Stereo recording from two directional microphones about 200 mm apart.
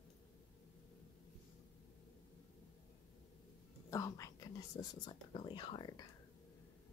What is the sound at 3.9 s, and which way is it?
Speech, 15° left (ahead or behind).